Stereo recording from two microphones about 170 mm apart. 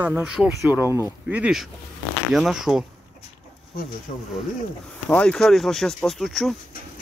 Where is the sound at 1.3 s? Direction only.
5° right (ahead or behind).